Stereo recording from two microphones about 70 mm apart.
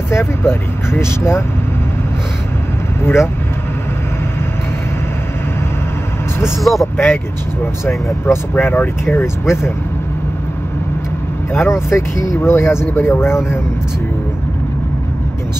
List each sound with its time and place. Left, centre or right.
0.1 s speech: left
3.0 s speech: left
6.6 s speech: centre
8.3 s speech: left
11.5 s speech: left